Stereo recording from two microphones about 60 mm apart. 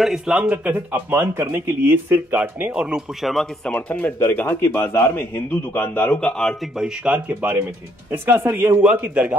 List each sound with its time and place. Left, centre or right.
0.0 s speech: centre
0.7 s speech: right
3.2 s speech: centre
3.6 s a man's voice: centre
6.8 s speech: centre
8.1 s speech: right